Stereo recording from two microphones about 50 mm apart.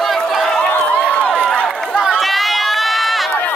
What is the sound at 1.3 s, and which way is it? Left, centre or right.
Run, centre.